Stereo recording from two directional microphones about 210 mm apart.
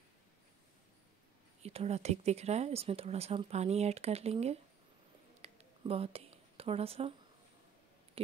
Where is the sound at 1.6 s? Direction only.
30° right (ahead or behind).